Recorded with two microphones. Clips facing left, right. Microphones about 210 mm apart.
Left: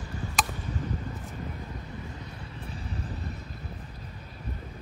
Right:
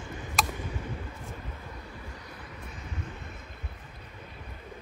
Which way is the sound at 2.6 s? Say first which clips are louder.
Left 4 dB; 35° left (ahead or behind).